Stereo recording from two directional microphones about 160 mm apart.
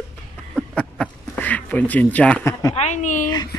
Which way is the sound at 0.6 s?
5° left (ahead or behind).